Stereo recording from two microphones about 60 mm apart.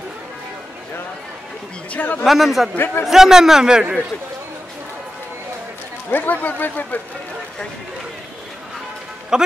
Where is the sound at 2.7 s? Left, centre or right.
Left.